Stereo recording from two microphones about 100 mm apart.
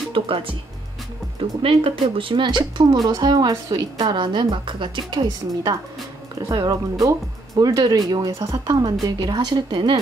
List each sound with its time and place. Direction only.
0.1 s speech: 65° right (ahead or behind)
1.6 s a woman's voice: 65° right (ahead or behind); by 9.9 s 50° right (ahead or behind)